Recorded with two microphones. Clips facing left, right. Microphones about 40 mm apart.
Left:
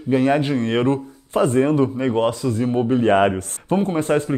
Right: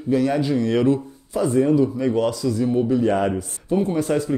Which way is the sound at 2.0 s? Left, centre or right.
Left.